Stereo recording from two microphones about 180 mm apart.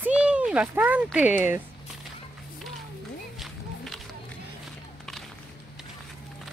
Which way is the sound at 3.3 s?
Centre (ahead or behind).